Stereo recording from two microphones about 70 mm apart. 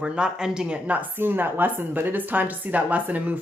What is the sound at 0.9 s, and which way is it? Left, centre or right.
Speech, right.